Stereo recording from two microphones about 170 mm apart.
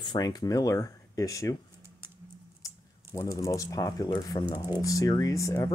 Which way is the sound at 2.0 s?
10° right (ahead or behind).